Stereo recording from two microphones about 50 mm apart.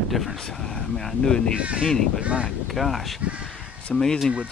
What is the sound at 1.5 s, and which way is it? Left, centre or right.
Speech, right.